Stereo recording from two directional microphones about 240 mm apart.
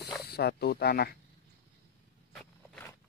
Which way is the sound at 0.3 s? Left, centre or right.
Left.